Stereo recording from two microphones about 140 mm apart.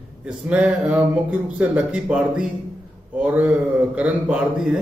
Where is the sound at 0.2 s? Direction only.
10° right (ahead or behind).